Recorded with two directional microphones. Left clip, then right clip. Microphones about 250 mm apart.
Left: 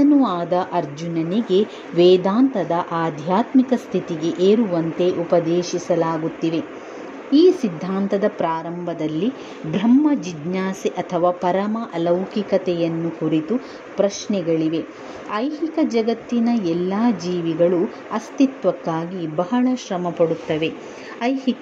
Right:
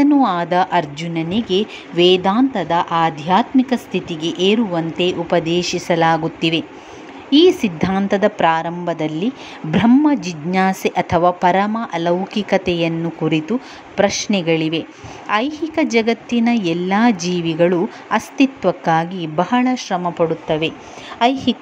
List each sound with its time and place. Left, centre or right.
0.0 s a woman's voice: centre
7.2 s a woman's voice: centre
14.1 s a woman's voice: right
14.4 s a woman's voice: centre